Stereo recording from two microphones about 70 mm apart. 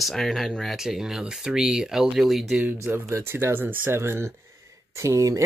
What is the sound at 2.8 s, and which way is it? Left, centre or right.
Speech, right.